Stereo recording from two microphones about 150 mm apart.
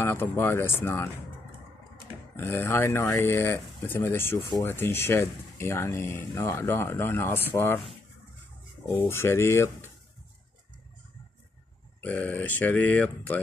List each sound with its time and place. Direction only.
0.0 s speech: 15° left (ahead or behind)
2.3 s speech: 15° left (ahead or behind)
8.9 s speech: 15° left (ahead or behind)
12.0 s speech: 15° left (ahead or behind)